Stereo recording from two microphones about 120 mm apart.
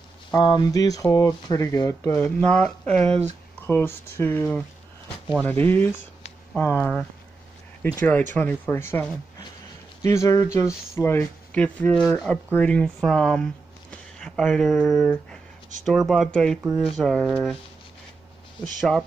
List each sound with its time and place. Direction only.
0.4 s speech: 35° left (ahead or behind)
2.1 s speech: 5° left (ahead or behind)
3.0 s speech: 60° right (ahead or behind)
3.6 s speech: 15° left (ahead or behind)
10.0 s speech: 25° left (ahead or behind)
11.5 s speech: 10° left (ahead or behind)
18.8 s speech: centre (ahead or behind)